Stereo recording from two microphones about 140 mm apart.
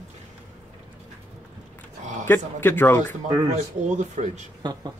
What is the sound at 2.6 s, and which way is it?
Speech, 15° left (ahead or behind).